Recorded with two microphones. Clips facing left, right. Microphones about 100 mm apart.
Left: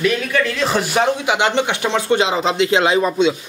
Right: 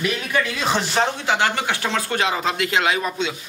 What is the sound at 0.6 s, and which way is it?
Speech, 5° left (ahead or behind).